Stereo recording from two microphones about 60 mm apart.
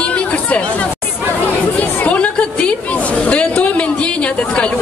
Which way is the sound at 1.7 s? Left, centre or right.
Left.